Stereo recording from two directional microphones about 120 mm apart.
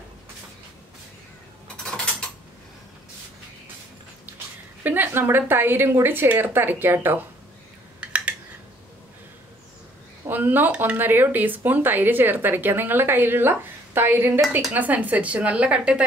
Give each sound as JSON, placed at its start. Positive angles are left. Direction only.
{"t": 4.8, "sound": "speech", "side_deg": -15}
{"t": 8.0, "sound": "a sound", "side_deg": -10}
{"t": 10.2, "sound": "speech", "side_deg": -15}